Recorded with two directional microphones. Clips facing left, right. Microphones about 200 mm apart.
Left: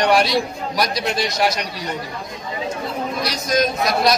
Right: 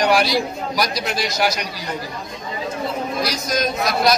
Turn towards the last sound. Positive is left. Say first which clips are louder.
# left 1 dB
turn(degrees=0)  # may be behind; listen again after turning